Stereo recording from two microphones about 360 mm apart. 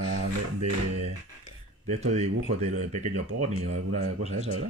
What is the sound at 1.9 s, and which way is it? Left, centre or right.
Speech, centre.